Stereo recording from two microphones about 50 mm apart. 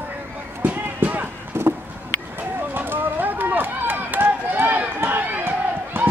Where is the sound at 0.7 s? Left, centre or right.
Right.